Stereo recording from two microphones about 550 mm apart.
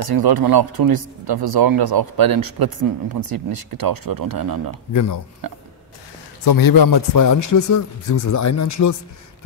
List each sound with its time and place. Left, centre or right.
0.0 s speech: right
4.9 s a man's voice: left
6.4 s a man's voice: left